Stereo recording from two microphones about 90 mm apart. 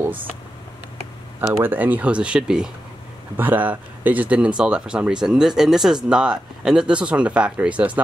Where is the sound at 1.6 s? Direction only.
20° right (ahead or behind).